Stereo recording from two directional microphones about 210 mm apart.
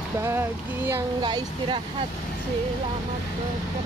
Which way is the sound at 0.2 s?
10° right (ahead or behind).